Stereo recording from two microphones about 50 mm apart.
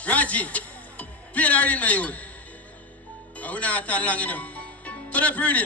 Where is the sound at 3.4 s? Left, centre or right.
Left.